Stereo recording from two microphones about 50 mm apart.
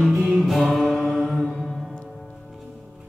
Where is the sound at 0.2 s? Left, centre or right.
Centre.